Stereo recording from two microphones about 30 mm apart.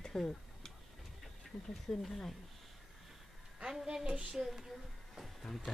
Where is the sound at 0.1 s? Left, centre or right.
Left.